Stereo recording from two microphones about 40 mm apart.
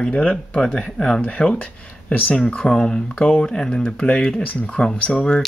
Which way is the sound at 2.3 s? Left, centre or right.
Left.